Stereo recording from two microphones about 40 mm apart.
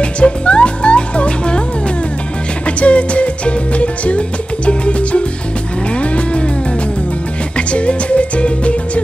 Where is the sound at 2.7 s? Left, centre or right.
Left.